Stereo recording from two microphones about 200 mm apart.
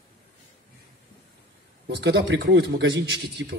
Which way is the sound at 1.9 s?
60° right (ahead or behind).